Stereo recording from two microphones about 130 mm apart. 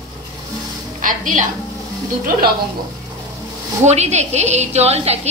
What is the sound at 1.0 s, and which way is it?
Speech, 85° right.